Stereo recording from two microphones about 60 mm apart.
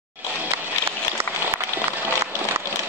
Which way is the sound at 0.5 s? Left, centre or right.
Right.